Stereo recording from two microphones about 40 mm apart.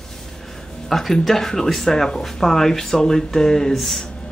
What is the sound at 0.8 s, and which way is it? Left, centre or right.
Speech, centre.